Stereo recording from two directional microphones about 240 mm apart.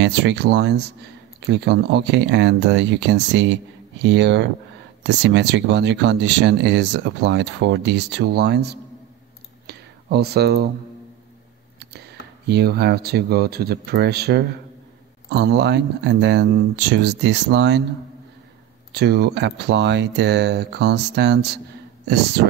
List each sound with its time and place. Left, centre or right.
0.0 s speech: right
9.7 s a sound: right
11.8 s speech: right
18.9 s speech: right